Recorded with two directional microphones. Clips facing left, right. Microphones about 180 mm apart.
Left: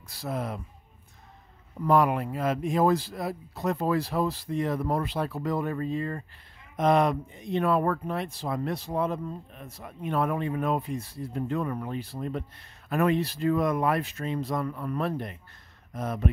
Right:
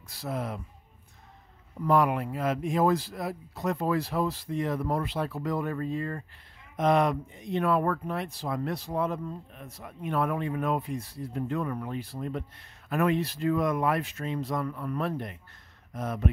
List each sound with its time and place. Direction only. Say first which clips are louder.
0.1 s speech: left 1 dB; 40° left (ahead or behind)
1.9 s speech: left 1 dB; 35° left (ahead or behind)
6.8 s speech: left 1 dB; 35° left (ahead or behind)